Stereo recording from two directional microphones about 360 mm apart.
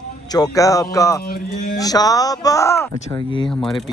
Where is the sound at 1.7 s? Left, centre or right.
Centre.